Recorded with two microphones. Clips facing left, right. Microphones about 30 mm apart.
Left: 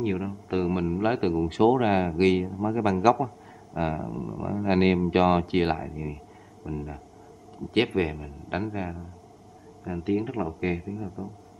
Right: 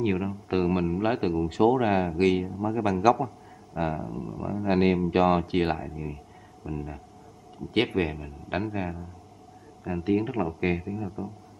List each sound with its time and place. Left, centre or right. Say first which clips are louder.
0.0 s speech: right 1 dB; centre
0.7 s a man's voice: even; centre
4.6 s a man's voice: left 1 dB; centre
9.8 s speech: right 2 dB; centre